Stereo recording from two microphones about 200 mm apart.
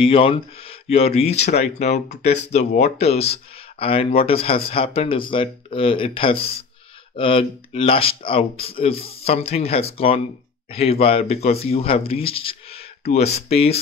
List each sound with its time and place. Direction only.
0.0 s speech: 25° left (ahead or behind)